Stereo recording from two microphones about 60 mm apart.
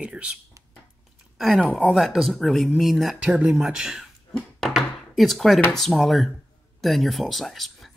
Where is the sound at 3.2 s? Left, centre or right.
Centre.